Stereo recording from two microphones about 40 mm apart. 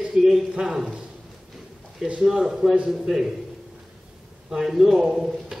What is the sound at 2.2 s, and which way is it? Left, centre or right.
Speech, centre.